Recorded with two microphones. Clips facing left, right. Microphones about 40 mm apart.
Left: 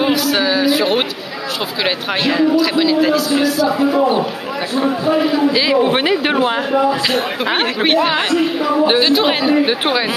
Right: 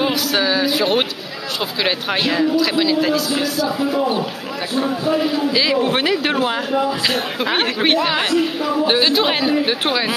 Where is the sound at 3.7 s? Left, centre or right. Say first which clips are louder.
Left 5 dB; centre.